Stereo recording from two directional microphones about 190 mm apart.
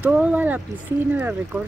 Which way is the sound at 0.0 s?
5° right (ahead or behind).